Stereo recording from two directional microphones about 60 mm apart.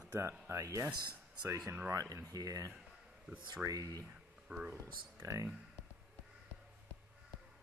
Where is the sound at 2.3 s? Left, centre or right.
Right.